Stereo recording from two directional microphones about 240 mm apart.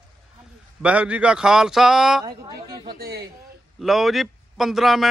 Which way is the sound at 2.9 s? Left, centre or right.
Right.